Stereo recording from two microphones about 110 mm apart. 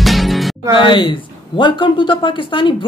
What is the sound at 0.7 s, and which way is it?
Speech, 45° left (ahead or behind).